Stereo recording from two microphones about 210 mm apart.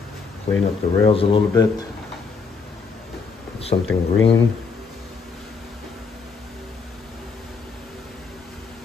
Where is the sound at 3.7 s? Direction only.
40° left (ahead or behind).